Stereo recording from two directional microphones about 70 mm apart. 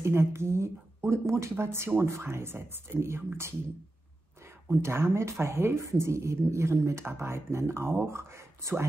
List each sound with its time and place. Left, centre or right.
0.0 s speech: right
4.6 s speech: right